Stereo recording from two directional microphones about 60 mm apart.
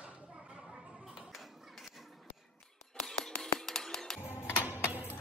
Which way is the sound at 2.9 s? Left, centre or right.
Centre.